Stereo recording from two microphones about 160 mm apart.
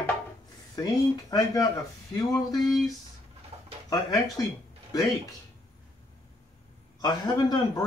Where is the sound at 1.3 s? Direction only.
25° left (ahead or behind).